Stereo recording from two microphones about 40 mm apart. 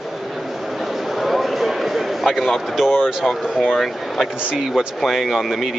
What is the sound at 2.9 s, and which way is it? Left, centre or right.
Speech, centre.